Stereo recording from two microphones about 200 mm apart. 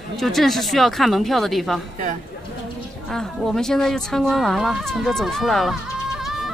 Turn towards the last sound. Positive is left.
turn(degrees=0)  # may be behind; listen again after turning